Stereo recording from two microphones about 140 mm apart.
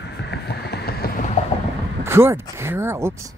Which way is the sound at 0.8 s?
90° left.